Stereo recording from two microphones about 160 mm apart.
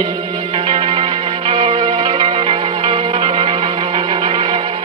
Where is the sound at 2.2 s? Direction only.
35° right (ahead or behind).